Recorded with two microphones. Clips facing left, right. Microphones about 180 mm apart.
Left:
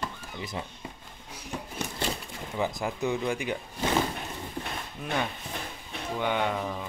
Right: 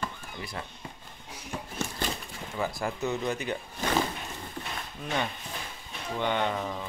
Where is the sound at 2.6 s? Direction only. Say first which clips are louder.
Left 1 dB; 20° left (ahead or behind).